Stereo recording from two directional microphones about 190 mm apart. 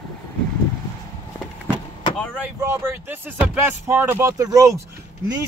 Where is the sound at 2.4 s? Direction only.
15° right (ahead or behind).